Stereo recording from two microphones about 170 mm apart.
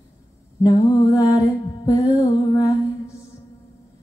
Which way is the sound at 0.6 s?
20° left (ahead or behind).